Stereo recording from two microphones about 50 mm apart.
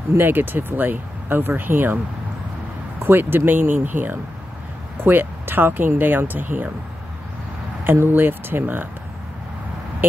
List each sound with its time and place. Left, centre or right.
0.2 s speech: right
3.0 s speech: right
7.8 s speech: right